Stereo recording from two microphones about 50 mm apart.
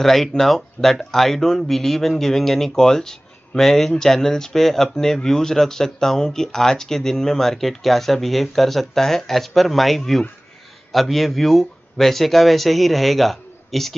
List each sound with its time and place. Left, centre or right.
0.0 s speech: centre
0.8 s speech: left
1.1 s speech: centre